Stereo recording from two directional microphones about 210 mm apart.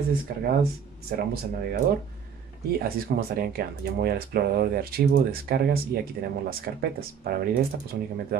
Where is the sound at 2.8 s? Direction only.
45° right (ahead or behind).